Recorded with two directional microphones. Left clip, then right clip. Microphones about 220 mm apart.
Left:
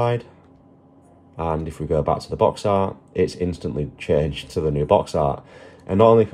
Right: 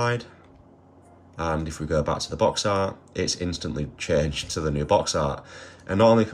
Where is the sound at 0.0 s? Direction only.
30° right (ahead or behind).